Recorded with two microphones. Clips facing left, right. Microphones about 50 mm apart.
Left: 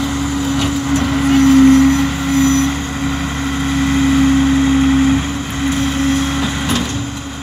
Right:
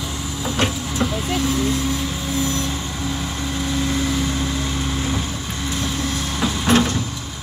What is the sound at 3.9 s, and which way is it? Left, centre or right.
Vehicle, left.